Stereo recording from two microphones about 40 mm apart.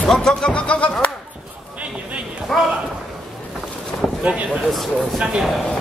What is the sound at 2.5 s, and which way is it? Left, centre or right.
Speech, centre.